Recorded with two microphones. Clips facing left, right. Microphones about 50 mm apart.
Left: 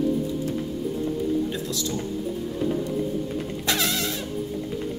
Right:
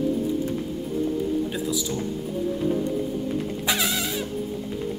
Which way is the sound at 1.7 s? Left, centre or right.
Centre.